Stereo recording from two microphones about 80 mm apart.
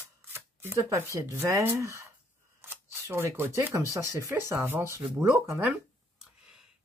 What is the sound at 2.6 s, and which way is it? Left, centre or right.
Camera, right.